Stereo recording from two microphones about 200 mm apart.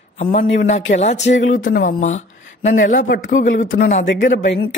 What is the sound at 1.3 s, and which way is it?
Speech, 70° left (ahead or behind).